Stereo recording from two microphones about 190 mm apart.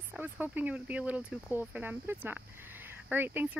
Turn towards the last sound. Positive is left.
turn(degrees=-10)  # may be behind; listen again after turning